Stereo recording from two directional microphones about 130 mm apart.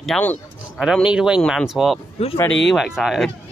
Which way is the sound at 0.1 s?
Centre (ahead or behind).